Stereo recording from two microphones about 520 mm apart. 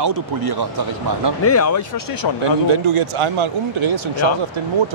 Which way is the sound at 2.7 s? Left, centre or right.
Right.